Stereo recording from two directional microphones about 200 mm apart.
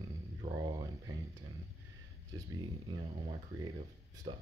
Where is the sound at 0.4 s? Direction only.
20° right (ahead or behind).